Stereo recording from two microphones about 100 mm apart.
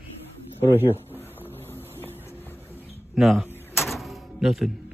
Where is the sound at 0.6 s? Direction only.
20° right (ahead or behind).